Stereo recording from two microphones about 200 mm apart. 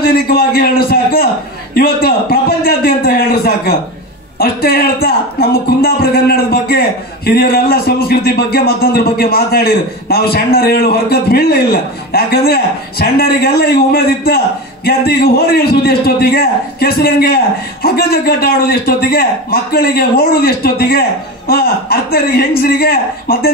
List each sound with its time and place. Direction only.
0.0 s speech: 50° left (ahead or behind)